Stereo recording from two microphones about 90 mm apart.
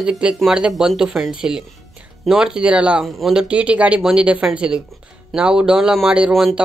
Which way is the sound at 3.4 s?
15° right (ahead or behind).